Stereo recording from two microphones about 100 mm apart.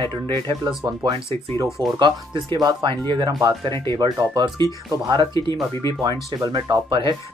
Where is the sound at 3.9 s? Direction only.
40° right (ahead or behind).